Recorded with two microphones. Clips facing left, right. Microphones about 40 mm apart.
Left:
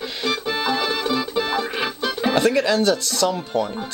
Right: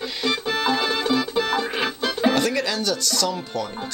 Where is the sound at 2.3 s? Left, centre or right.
Centre.